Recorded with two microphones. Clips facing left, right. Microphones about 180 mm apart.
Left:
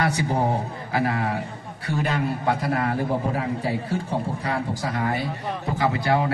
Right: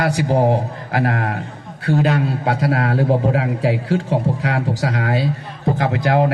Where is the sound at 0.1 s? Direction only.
85° right.